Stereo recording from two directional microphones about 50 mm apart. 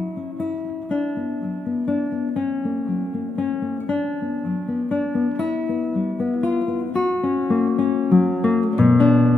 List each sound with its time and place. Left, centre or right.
6.5 s guitar: left
7.7 s music: centre
8.4 s guitar: centre